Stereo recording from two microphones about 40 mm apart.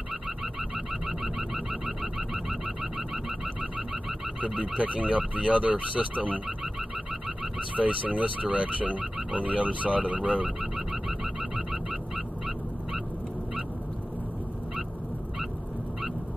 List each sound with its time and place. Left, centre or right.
0.6 s a sound: centre
4.4 s speech: right
7.7 s speech: right
10.6 s frog: centre